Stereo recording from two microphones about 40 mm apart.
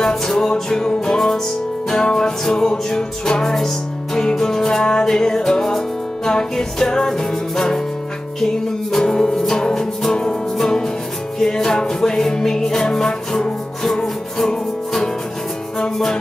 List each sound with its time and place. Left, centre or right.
0.0 s music: centre
8.9 s music: centre
11.3 s music: centre